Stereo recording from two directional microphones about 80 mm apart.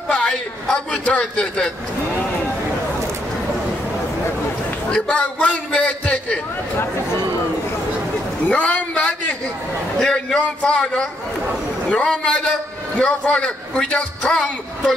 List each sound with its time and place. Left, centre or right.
0.1 s a sound: centre
1.2 s a man's voice: centre
4.9 s a man's voice: centre
8.5 s a man's voice: centre